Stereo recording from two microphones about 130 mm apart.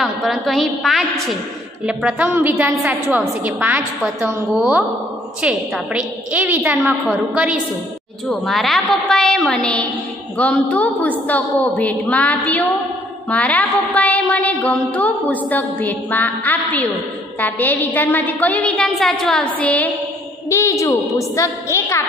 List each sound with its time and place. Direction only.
0.0 s a woman's voice: centre (ahead or behind)
2.2 s a woman's voice: 20° right (ahead or behind)
8.3 s a woman's voice: centre (ahead or behind)
10.3 s a sound: 10° left (ahead or behind)
20.4 s a woman's voice: 20° left (ahead or behind)